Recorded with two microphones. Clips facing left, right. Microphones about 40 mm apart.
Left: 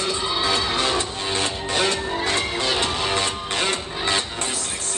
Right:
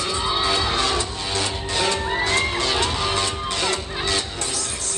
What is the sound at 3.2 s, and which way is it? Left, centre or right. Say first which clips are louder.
Music: even; left.